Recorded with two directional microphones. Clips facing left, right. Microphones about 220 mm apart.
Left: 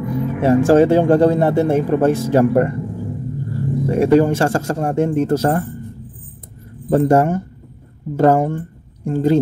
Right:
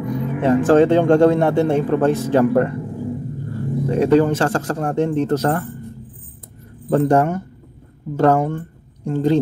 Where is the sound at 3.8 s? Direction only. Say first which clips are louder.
Left 1 dB; 10° left (ahead or behind).